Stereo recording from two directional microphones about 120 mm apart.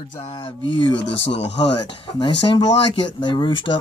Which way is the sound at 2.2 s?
40° left (ahead or behind).